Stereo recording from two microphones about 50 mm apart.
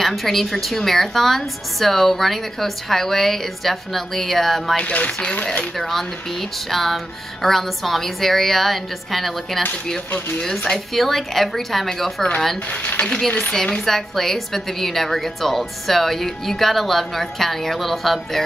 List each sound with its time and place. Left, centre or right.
0.0 s a woman's voice: centre
4.7 s speech: left
5.8 s a woman's voice: centre
10.9 s a woman's voice: centre
13.0 s a woman's voice: centre